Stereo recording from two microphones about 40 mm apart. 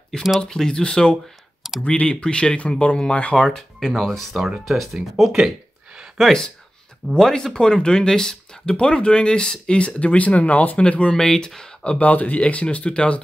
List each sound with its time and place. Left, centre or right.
0.6 s speech: centre
1.1 s clicking: centre
1.8 s speech: left
2.2 s speech: left
3.3 s speech: centre
7.2 s speech: centre; by 10.8 s left
10.8 s speech: left
11.1 s speech: centre
12.0 s speech: left